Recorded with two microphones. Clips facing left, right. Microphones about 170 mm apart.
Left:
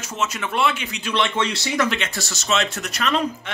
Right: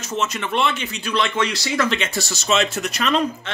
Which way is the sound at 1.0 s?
25° left (ahead or behind).